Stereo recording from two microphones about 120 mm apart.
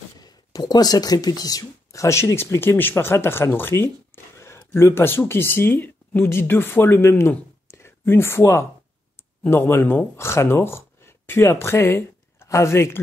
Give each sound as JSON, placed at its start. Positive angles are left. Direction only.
{"t": 0.2, "sound": "speech", "side_deg": 35}